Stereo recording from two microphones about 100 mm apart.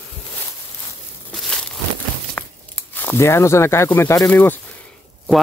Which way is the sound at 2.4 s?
15° left (ahead or behind).